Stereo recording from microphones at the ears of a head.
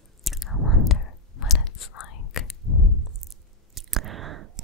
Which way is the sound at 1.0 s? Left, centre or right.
Left.